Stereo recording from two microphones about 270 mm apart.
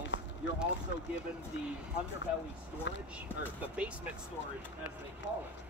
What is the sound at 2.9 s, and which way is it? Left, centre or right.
Speech, left.